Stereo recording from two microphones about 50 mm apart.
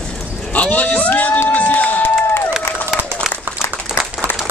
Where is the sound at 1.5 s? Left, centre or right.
Left.